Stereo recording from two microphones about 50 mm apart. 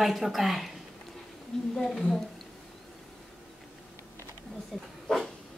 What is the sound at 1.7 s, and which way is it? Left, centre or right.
Speech, centre.